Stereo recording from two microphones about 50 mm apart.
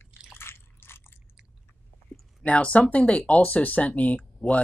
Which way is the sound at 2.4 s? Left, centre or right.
Left.